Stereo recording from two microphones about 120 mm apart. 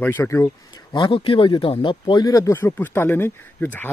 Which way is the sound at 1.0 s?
45° left (ahead or behind).